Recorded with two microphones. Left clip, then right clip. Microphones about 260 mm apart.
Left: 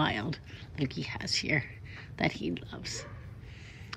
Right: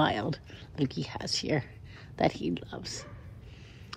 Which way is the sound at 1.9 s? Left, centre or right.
Centre.